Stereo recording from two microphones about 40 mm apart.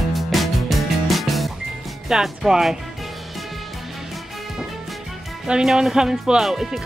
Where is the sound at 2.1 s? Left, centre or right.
Centre.